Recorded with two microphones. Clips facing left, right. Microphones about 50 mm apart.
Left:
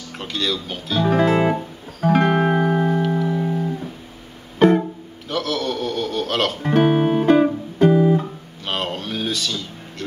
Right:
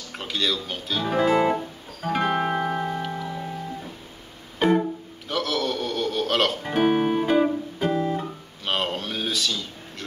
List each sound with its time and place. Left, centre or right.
0.2 s speech: centre
1.0 s music: centre
4.6 s music: centre
5.3 s a sound: centre
6.7 s guitar: centre
7.3 s music: centre
8.2 s music: centre